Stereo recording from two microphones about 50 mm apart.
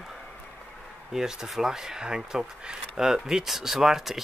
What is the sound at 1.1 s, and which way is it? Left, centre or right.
Speech, centre.